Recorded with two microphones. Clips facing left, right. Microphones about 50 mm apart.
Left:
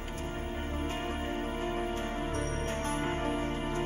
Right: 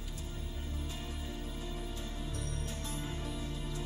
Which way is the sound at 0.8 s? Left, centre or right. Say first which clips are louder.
Left 11 dB; left.